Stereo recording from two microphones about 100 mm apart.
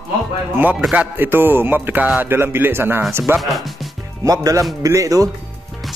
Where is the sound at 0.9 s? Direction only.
15° right (ahead or behind).